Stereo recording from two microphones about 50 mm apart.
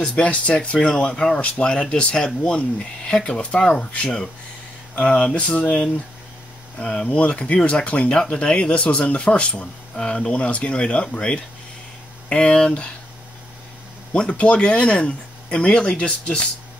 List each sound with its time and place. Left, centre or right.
0.0 s speech: left
4.9 s speech: left
14.1 s speech: left